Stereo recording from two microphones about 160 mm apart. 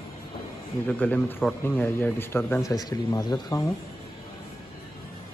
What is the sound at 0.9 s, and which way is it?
Speech, 10° left (ahead or behind).